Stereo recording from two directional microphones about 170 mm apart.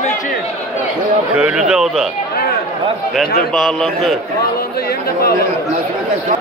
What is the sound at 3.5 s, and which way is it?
Speech, centre (ahead or behind).